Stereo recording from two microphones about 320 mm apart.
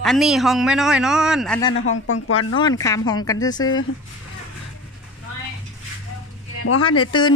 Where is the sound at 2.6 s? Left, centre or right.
Centre.